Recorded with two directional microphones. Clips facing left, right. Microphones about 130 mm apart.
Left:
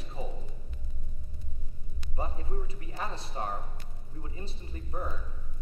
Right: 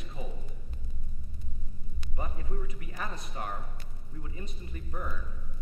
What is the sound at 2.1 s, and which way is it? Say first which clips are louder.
A man's voice: left 2 dB; 30° left (ahead or behind).